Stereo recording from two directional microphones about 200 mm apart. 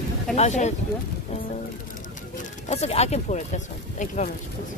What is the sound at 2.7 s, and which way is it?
Speech, 30° left (ahead or behind).